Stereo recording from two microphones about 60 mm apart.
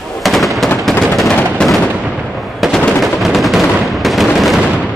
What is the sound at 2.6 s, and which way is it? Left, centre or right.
Machine gun, centre.